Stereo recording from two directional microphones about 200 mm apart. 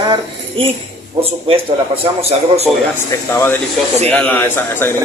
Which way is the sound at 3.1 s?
15° left (ahead or behind).